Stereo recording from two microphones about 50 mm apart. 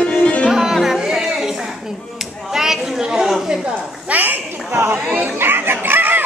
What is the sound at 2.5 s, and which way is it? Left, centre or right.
Chatter, centre.